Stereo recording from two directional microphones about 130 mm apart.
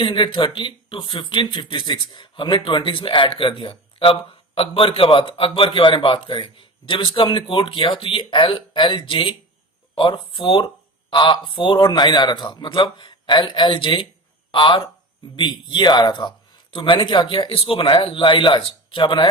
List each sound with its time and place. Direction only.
0.0 s speech: 40° left (ahead or behind)